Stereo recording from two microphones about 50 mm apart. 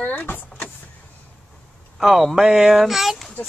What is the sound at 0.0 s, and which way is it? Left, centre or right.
Power windows, left.